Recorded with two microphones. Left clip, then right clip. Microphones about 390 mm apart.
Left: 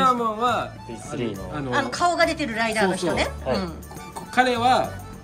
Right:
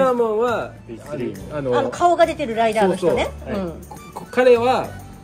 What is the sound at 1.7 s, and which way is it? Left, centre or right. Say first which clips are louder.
A woman's voice: right 5 dB; centre.